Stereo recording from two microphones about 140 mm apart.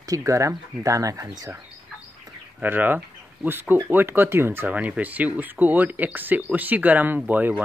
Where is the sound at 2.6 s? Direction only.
15° right (ahead or behind).